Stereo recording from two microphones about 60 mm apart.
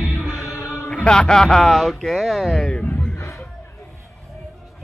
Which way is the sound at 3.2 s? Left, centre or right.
Left.